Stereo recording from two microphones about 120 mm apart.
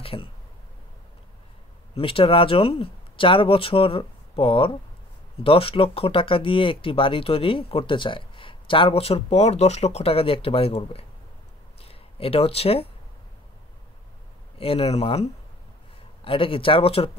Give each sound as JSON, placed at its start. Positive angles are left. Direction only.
{"t": 0.0, "sound": "speech", "side_deg": 50}
{"t": 2.0, "sound": "speech", "side_deg": 50}
{"t": 14.6, "sound": "speech", "side_deg": 55}
{"t": 16.3, "sound": "speech", "side_deg": 50}